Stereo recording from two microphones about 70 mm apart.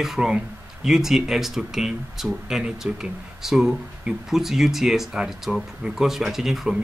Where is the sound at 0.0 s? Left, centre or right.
Centre.